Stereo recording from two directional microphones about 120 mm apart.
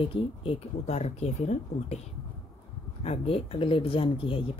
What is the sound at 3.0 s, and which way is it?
Speech, 55° left (ahead or behind).